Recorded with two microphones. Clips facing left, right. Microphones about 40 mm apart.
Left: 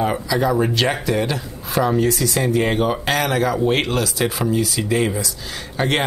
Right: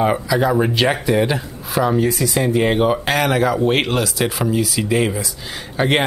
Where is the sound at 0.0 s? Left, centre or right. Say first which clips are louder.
Right 3 dB; centre.